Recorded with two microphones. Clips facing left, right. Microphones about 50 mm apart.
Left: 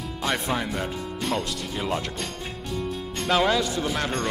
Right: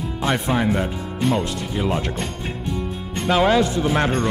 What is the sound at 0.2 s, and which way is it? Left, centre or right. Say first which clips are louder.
Speech: right 5 dB; centre.